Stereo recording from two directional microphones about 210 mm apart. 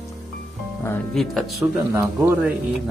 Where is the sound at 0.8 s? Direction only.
5° left (ahead or behind).